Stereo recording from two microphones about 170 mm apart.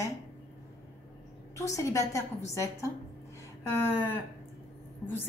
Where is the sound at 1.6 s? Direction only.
20° left (ahead or behind).